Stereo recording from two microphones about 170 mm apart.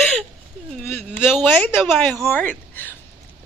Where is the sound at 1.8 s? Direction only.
10° left (ahead or behind).